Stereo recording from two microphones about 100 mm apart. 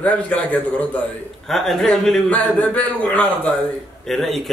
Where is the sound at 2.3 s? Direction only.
15° left (ahead or behind).